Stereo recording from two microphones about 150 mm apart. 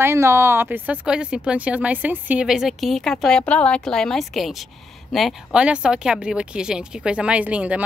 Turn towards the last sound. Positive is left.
turn(degrees=-10)  # may be behind; listen again after turning